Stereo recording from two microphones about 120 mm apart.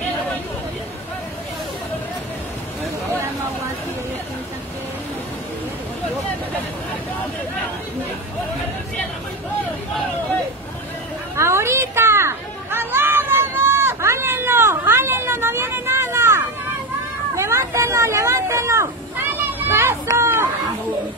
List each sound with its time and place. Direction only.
11.3 s children playing: 20° right (ahead or behind)
17.4 s vehicle: 25° right (ahead or behind)